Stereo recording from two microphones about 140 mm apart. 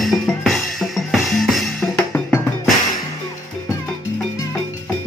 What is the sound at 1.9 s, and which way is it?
Music, 15° left (ahead or behind).